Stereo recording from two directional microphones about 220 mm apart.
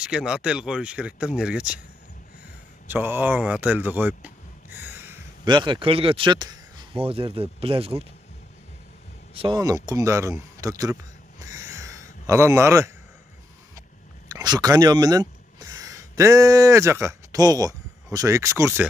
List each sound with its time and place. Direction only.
0.0 s speech: 5° right (ahead or behind)
2.9 s speech: 10° right (ahead or behind)
5.4 s speech: 20° right (ahead or behind)
9.3 s speech: 25° right (ahead or behind)
14.3 s speech: 20° right (ahead or behind)